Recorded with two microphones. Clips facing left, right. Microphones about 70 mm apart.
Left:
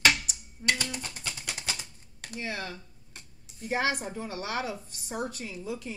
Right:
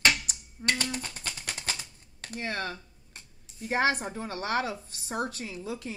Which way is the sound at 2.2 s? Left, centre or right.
Right.